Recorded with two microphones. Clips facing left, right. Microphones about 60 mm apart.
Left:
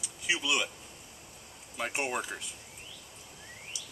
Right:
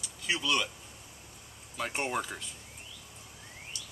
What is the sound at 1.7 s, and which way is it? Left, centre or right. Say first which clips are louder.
Speech: even; centre.